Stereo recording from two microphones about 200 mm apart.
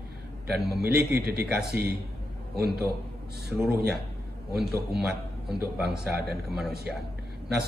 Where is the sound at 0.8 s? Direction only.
50° right (ahead or behind).